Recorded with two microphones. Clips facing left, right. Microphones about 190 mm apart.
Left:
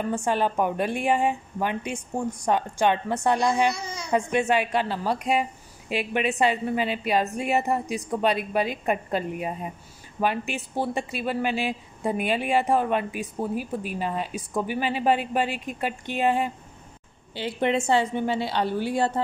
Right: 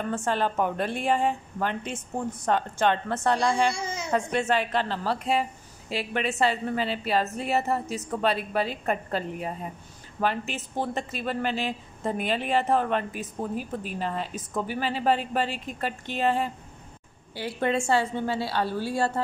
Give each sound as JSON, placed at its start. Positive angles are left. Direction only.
{"t": 0.1, "sound": "speech", "side_deg": 15}
{"t": 3.7, "sound": "baby cry", "side_deg": -25}
{"t": 4.1, "sound": "a woman's voice", "side_deg": 15}